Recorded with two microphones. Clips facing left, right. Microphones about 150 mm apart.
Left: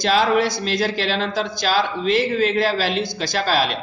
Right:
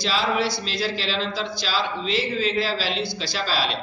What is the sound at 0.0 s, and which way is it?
Speech, 50° left (ahead or behind).